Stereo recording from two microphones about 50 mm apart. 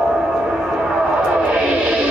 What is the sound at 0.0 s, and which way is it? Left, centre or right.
Music, centre.